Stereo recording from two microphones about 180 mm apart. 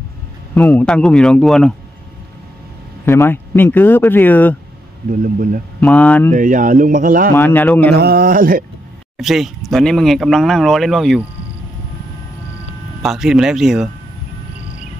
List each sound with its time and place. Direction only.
0.6 s speech: 5° left (ahead or behind)
3.1 s speech: 10° left (ahead or behind)
5.1 s speech: 50° right (ahead or behind)
5.8 s speech: 5° left (ahead or behind)
6.3 s speech: 45° right (ahead or behind)
7.3 s speech: 10° left (ahead or behind)
7.9 s a sound: 60° right (ahead or behind)
9.2 s speech: centre (ahead or behind)
13.0 s speech: centre (ahead or behind)